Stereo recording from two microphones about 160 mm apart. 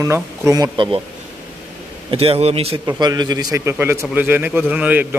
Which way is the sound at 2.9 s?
25° right (ahead or behind).